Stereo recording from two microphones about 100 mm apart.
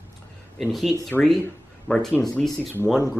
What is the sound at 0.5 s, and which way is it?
Speech, centre (ahead or behind).